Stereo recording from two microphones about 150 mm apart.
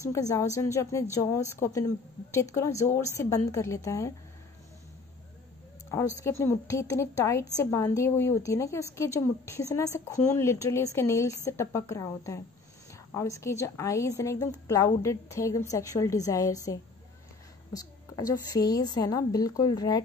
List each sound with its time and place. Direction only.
0.1 s a woman's voice: 20° left (ahead or behind)
6.1 s a woman's voice: 20° left (ahead or behind)
17.7 s a woman's voice: 25° left (ahead or behind)